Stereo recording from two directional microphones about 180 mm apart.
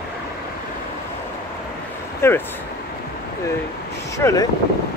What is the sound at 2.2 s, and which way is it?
Speech, 15° left (ahead or behind).